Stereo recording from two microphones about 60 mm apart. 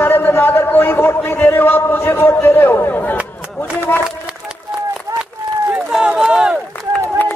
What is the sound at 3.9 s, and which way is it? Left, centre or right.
Run, left.